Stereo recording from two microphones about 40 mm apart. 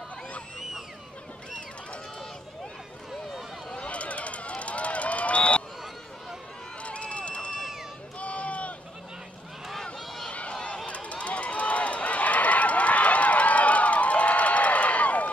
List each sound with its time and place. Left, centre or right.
3.7 s run: left
6.8 s run: left
10.3 s a sound: left
10.9 s run: left